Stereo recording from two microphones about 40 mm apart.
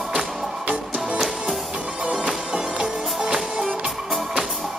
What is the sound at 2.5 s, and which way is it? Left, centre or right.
Music, right.